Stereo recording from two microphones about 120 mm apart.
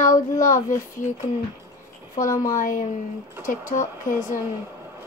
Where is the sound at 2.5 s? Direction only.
90° left.